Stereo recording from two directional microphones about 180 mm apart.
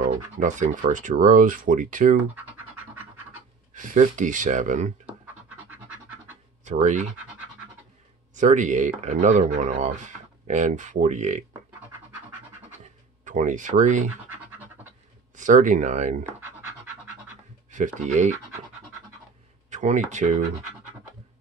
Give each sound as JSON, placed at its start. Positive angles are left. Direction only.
{"t": 0.0, "sound": "speech", "side_deg": -45}
{"t": 2.4, "sound": "scratch", "side_deg": -10}
{"t": 3.7, "sound": "speech", "side_deg": -45}
{"t": 5.0, "sound": "scratch", "side_deg": -10}
{"t": 6.6, "sound": "speech", "side_deg": -45}
{"t": 8.4, "sound": "speech", "side_deg": -40}
{"t": 13.2, "sound": "speech", "side_deg": -45}
{"t": 15.3, "sound": "speech", "side_deg": -45}
{"t": 17.6, "sound": "speech", "side_deg": -45}
{"t": 19.7, "sound": "speech", "side_deg": -40}